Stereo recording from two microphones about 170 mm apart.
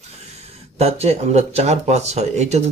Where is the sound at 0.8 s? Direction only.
40° right (ahead or behind).